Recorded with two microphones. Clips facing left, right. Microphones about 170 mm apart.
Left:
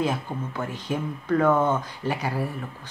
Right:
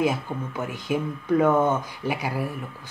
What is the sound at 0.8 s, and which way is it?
Speech, 10° right (ahead or behind).